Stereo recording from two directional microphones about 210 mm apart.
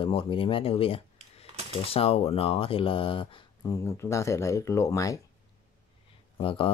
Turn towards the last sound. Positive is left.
turn(degrees=25)  # may be behind; listen again after turning